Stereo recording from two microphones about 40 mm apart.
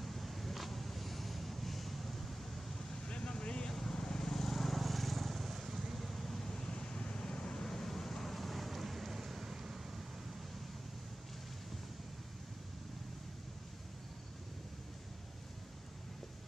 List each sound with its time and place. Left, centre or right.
0.0 s vehicle: centre
3.1 s vehicle: left
7.6 s vehicle: centre